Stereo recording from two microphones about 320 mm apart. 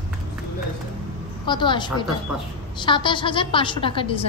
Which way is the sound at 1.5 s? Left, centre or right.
Centre.